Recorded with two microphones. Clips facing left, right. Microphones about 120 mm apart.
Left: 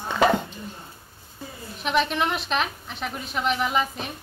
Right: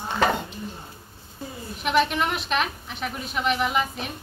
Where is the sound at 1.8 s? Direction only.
Centre (ahead or behind).